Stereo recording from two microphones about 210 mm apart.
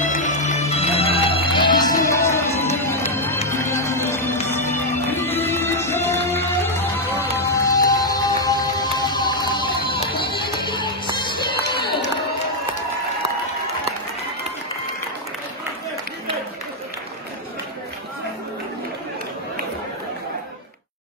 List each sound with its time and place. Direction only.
0.1 s music: 35° left (ahead or behind)